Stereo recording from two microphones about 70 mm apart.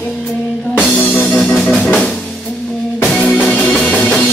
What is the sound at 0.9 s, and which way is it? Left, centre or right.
Music, left.